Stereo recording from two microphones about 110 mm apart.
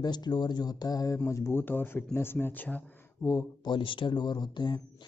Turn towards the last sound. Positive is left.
turn(degrees=40)  # may be behind; listen again after turning